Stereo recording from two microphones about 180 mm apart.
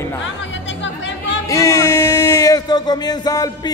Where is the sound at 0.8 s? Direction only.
90° left.